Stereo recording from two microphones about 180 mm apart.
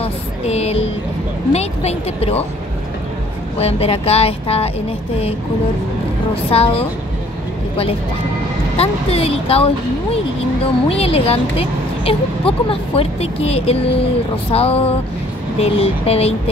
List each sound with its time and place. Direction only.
0.0 s a sound: 35° left (ahead or behind)
1.5 s speech: 35° left (ahead or behind)
3.5 s speech: 35° left (ahead or behind)
6.3 s speech: 35° left (ahead or behind)
8.7 s speech: 35° left (ahead or behind)